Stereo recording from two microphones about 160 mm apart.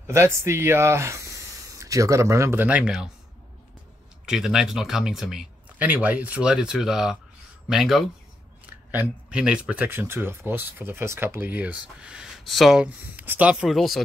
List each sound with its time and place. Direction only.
0.0 s speech: 15° right (ahead or behind)
4.3 s speech: 5° right (ahead or behind)